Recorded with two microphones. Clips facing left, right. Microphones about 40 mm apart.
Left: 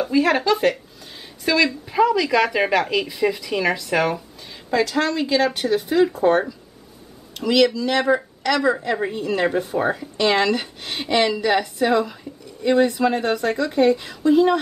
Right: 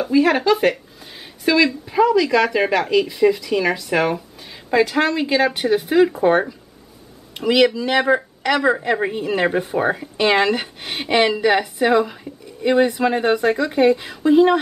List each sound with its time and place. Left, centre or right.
0.0 s speech: centre
4.6 s speech: centre